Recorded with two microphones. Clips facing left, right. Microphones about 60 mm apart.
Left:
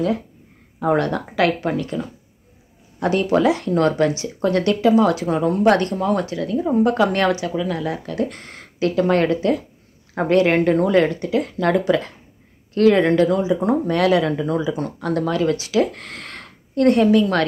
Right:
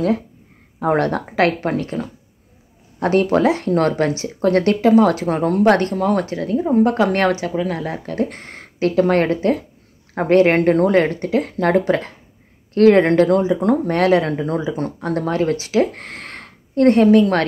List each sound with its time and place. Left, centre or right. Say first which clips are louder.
0.7 s speech: right 1 dB; right
5.9 s speech: right 2 dB; right
6.2 s speech: right 2 dB; right